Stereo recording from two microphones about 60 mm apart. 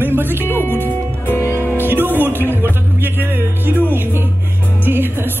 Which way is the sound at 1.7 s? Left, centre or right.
Right.